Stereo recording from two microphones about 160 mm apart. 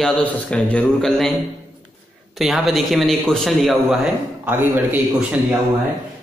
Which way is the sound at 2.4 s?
Centre (ahead or behind).